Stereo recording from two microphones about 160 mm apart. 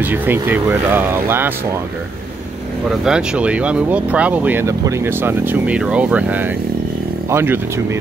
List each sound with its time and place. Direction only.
0.0 s speech: 10° right (ahead or behind)
3.0 s speech: 5° right (ahead or behind)